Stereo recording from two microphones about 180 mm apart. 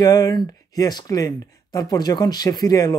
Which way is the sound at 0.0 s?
20° left (ahead or behind).